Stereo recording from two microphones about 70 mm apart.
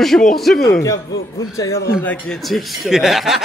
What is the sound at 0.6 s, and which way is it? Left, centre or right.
Speech, left.